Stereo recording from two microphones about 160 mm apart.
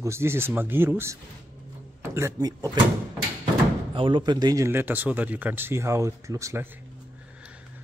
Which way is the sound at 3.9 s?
30° right (ahead or behind).